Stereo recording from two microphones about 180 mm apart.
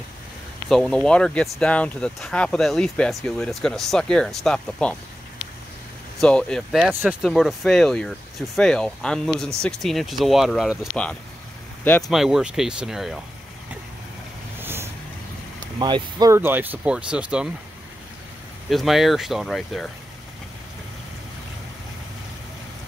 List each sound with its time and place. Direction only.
0.7 s speech: 5° left (ahead or behind)
6.2 s speech: 5° left (ahead or behind)
14.6 s vehicle: 10° right (ahead or behind)
15.8 s speech: 20° right (ahead or behind)
16.3 s speech: 10° right (ahead or behind)
18.7 s speech: centre (ahead or behind)